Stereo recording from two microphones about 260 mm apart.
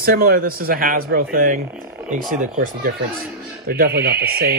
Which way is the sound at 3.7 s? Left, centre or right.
Right.